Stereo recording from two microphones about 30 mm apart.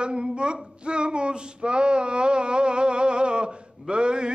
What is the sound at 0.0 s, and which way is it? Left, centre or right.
Female singing, right.